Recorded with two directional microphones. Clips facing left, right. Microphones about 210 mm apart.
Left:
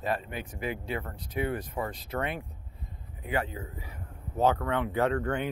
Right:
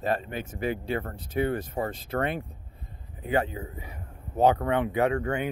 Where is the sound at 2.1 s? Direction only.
30° right (ahead or behind); by 5.4 s 10° right (ahead or behind).